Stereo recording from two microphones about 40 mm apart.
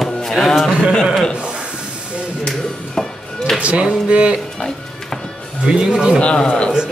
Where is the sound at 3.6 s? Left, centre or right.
Right.